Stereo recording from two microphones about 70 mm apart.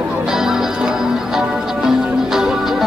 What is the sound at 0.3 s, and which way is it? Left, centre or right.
Music, centre.